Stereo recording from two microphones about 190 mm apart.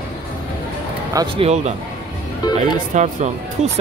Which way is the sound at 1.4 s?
35° right (ahead or behind).